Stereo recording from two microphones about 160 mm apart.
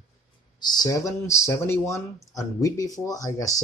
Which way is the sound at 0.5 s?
25° left (ahead or behind).